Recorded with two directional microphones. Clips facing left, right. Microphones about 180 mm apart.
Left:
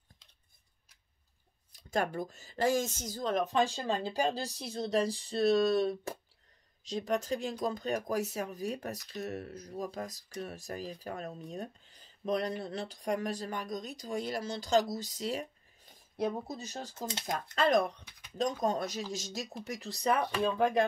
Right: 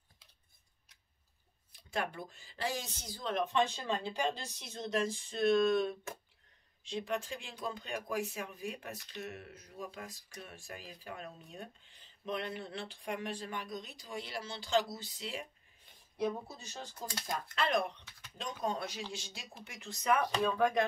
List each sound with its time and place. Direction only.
1.9 s speech: 40° left (ahead or behind)
17.0 s speech: 25° left (ahead or behind)
17.6 s speech: 40° left (ahead or behind)